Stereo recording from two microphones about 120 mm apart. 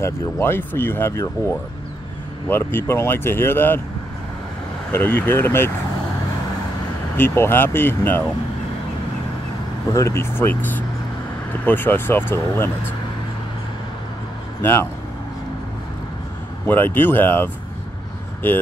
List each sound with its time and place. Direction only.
0.0 s speech: 20° left (ahead or behind)
2.5 s speech: 20° left (ahead or behind)
4.9 s speech: 20° left (ahead or behind)
7.2 s speech: 20° left (ahead or behind)
9.9 s speech: 20° left (ahead or behind)
14.6 s speech: 20° left (ahead or behind)
16.6 s speech: 15° left (ahead or behind)